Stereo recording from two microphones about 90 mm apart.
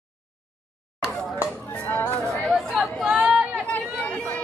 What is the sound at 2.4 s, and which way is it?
Chatter, centre (ahead or behind).